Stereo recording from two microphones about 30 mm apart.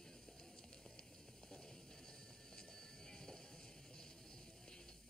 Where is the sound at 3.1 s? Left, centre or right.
Centre.